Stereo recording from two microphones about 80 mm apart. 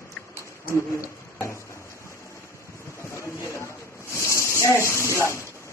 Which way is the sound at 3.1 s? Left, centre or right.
Left.